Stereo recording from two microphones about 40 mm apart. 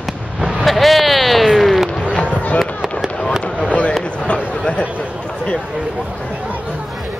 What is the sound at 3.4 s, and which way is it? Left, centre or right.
Fireworks, left.